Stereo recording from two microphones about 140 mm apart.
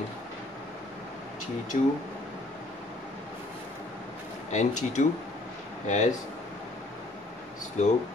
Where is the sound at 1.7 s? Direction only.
70° left (ahead or behind).